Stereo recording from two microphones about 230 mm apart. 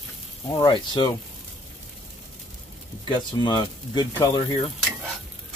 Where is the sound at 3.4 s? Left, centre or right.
Centre.